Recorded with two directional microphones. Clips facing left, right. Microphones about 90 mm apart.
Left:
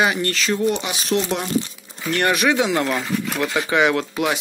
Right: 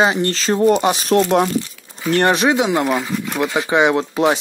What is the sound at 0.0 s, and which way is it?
Speech, 30° right (ahead or behind).